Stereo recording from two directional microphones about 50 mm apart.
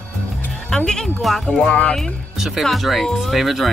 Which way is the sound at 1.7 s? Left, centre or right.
Left.